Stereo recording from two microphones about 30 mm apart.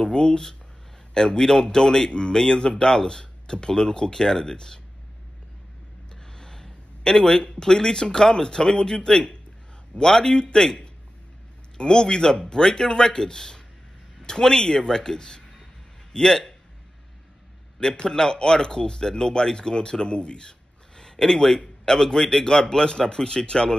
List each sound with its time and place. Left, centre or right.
0.0 s speech: left
6.3 s a sound: centre
7.7 s speech: left
11.7 s a man's voice: left
18.0 s speech: left